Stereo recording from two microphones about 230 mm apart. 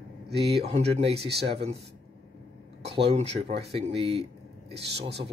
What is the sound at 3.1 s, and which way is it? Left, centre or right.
Speech, right.